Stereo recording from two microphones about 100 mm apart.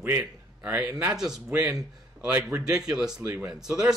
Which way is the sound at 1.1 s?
5° right (ahead or behind).